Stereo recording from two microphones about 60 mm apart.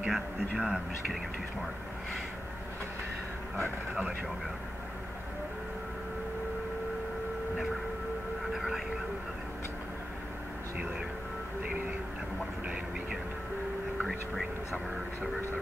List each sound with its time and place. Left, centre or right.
0.1 s speech: centre
8.5 s speech: centre
12.6 s vehicle: centre
14.0 s whispering: centre